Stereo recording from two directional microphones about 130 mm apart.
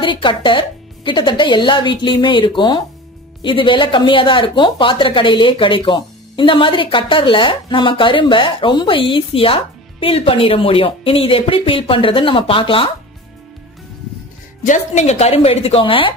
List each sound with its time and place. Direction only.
0.0 s a woman's voice: 40° left (ahead or behind)
14.6 s speech: 70° left (ahead or behind); by 16.2 s 40° left (ahead or behind)